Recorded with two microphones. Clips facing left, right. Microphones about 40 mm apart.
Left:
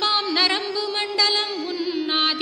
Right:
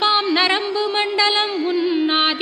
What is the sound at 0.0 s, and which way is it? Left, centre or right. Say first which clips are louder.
Music: right 4 dB; right.